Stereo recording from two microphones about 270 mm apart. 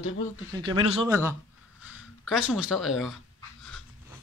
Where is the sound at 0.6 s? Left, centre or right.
Centre.